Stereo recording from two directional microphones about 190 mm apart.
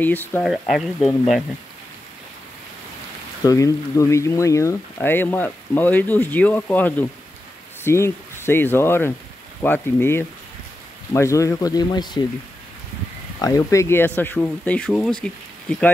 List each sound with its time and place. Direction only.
0.0 s speech: 10° left (ahead or behind)
0.5 s speech: centre (ahead or behind)
3.4 s speech: 15° left (ahead or behind)
13.4 s speech: 15° left (ahead or behind)